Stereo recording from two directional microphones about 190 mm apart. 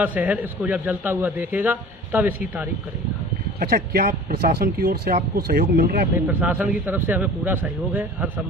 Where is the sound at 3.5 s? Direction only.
55° right (ahead or behind).